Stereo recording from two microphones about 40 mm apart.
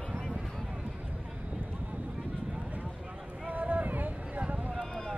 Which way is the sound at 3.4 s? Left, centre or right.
Right.